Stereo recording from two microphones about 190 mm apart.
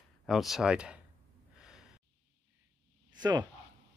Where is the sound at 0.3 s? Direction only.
Centre (ahead or behind).